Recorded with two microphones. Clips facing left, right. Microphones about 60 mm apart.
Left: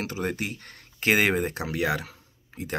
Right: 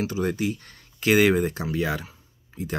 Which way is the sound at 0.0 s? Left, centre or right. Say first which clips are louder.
Right 4 dB; left.